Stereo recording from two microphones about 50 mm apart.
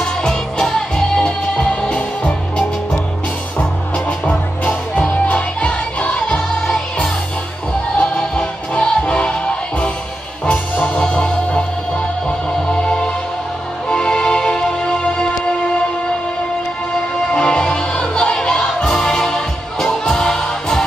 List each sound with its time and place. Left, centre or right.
0.0 s music: centre
4.9 s music: left
6.2 s music: centre
8.0 s music: centre
17.3 s music: left